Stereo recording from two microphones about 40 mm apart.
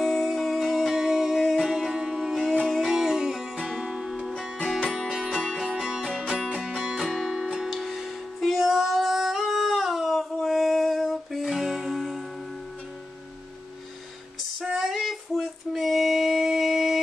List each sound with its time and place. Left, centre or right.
0.0 s music: centre
5.6 s music: centre
6.6 s music: centre
7.0 s music: centre
7.3 s music: centre
14.6 s child singing: centre